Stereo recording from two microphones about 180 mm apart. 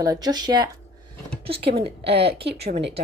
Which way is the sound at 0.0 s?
20° right (ahead or behind).